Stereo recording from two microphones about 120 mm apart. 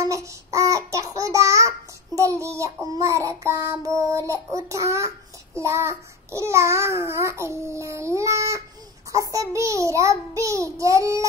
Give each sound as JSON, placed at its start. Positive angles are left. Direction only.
{"t": 0.0, "sound": "child singing", "side_deg": -25}